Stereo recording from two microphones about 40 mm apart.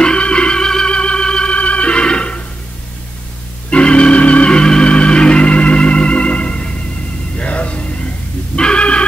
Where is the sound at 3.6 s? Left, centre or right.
Left.